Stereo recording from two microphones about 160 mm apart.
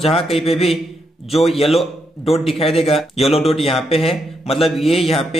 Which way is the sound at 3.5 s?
35° left (ahead or behind).